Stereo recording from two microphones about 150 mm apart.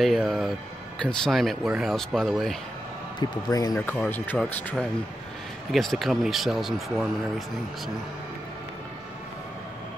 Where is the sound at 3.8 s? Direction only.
10° left (ahead or behind).